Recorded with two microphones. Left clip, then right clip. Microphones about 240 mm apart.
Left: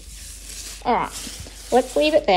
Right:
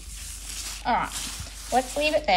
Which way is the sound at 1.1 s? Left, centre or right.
Centre.